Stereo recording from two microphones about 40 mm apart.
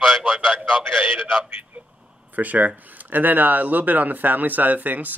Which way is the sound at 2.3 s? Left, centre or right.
Right.